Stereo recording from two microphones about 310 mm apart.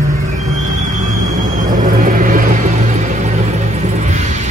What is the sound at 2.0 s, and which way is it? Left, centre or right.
Vehicle, right.